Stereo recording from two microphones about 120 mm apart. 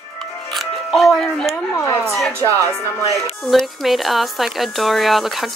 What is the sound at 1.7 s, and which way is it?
Chopping, 25° left (ahead or behind).